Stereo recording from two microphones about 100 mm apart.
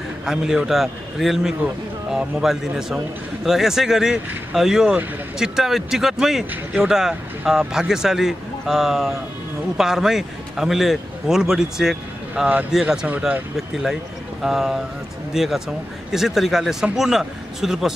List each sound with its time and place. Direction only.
0.2 s a man's voice: 5° right (ahead or behind)
14.4 s speech: 5° right (ahead or behind)